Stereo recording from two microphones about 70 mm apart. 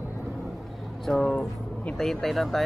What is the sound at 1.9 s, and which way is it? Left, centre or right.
Speech, centre.